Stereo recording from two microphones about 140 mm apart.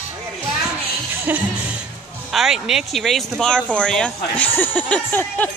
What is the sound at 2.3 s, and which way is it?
Speech, 5° right (ahead or behind).